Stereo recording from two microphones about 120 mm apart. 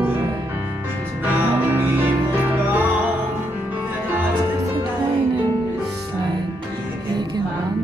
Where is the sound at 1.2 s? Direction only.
15° right (ahead or behind).